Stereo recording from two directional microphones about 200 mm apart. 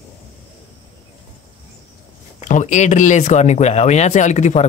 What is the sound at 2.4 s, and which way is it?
Speech, 35° left (ahead or behind).